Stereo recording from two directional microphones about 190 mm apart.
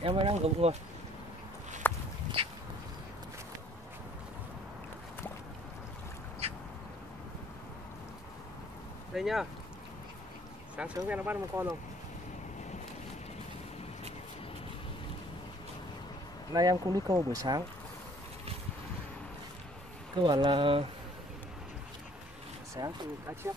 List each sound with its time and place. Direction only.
0.0 s speech: 30° right (ahead or behind)
1.8 s a sound: 10° left (ahead or behind)
9.1 s speech: centre (ahead or behind)
11.1 s speech: 10° right (ahead or behind)
16.5 s speech: 20° right (ahead or behind)
20.2 s speech: 25° right (ahead or behind)
22.8 s speech: 15° right (ahead or behind)